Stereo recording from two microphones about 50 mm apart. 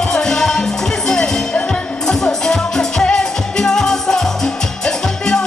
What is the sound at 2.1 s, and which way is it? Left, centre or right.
Music, centre.